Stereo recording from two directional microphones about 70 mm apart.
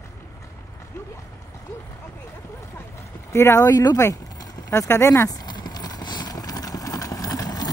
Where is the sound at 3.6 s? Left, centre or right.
Left.